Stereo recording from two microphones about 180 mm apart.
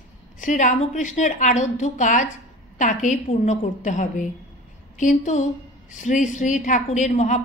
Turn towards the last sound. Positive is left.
turn(degrees=40)  # may be behind; listen again after turning